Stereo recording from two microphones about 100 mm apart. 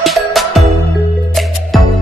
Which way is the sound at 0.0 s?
Centre (ahead or behind).